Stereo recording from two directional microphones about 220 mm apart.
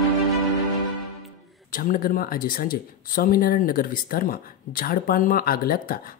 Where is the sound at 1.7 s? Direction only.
40° left (ahead or behind).